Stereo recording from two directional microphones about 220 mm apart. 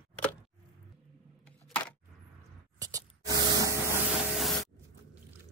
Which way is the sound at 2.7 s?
15° right (ahead or behind).